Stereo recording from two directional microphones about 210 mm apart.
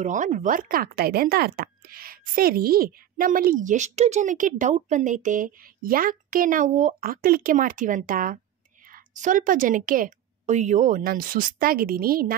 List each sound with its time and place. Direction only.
0.0 s speech: 35° right (ahead or behind)